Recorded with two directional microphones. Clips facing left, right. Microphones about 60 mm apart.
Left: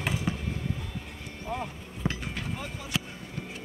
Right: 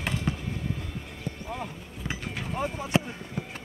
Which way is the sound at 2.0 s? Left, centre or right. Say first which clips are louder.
Left 3 dB; left.